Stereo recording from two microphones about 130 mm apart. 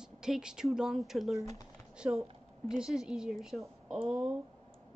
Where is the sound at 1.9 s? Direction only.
5° right (ahead or behind).